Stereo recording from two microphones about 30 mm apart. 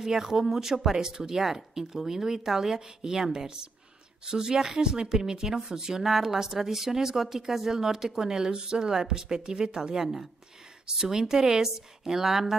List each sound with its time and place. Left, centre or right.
0.0 s a woman's voice: centre
9.9 s a woman's voice: centre